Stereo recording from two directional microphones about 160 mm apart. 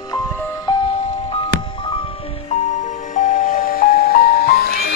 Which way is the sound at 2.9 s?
50° left (ahead or behind).